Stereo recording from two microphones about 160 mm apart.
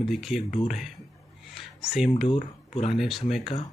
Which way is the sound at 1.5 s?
Centre (ahead or behind).